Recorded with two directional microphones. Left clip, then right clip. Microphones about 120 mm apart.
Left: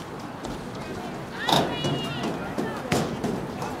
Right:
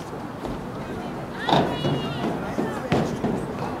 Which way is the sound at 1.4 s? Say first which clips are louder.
Right 2 dB; 40° left (ahead or behind).